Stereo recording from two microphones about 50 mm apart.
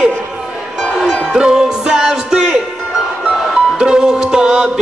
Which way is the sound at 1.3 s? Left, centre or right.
Centre.